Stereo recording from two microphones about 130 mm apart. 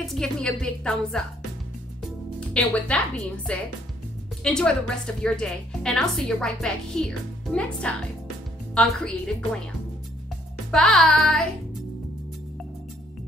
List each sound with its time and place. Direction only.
0.0 s a woman's voice: 5° left (ahead or behind)
2.5 s a woman's voice: 10° left (ahead or behind)
10.7 s a woman's voice: centre (ahead or behind)